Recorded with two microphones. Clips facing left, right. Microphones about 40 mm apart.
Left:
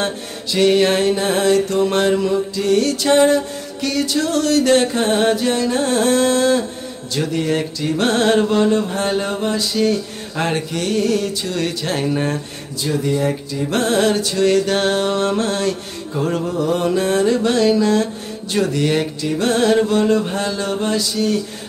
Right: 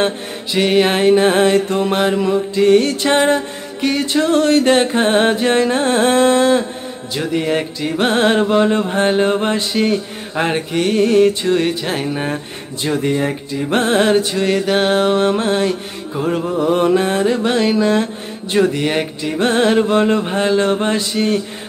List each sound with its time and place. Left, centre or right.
0.0 s music: right
2.5 s music: right
12.8 s music: right